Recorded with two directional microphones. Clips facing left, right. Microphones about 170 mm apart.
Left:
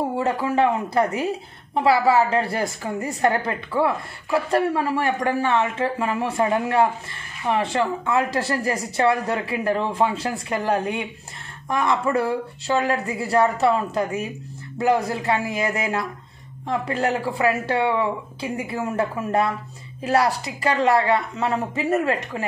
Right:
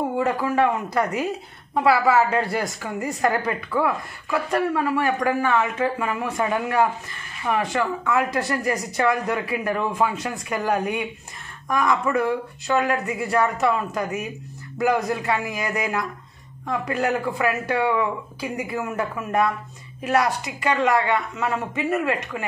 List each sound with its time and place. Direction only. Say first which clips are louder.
0.2 s a woman's voice: even; 25° left (ahead or behind)